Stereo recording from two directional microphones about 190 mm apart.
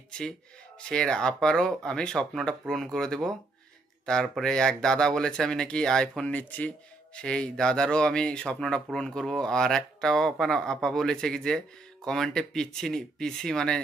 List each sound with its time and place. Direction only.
0.7 s speech: 5° left (ahead or behind)